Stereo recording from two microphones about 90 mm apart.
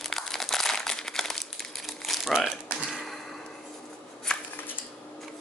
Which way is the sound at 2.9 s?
Centre (ahead or behind).